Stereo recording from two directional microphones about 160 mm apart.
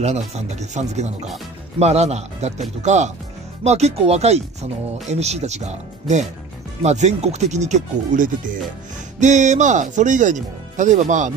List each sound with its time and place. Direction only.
0.0 s speech: 45° right (ahead or behind)